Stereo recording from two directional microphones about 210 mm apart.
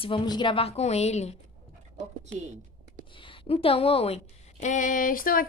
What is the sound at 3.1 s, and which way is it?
A woman's voice, 25° left (ahead or behind).